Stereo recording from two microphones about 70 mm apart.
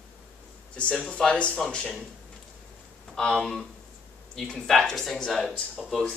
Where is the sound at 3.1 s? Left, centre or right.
Centre.